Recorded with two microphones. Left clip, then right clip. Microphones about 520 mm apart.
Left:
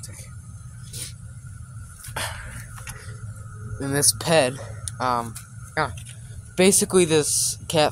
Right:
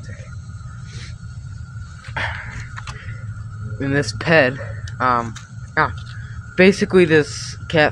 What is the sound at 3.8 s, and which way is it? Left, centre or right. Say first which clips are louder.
Speech: right 3 dB; left.